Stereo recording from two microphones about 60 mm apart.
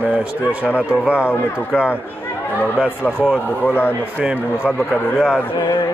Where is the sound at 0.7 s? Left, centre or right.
Right.